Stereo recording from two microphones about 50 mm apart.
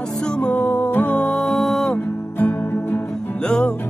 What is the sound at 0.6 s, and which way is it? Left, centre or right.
Music, left.